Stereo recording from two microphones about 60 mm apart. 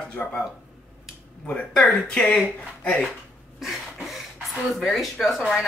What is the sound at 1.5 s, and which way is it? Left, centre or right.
Speech, left.